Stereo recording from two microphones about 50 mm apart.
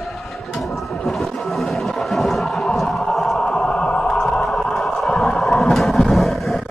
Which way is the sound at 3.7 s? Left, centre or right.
Centre.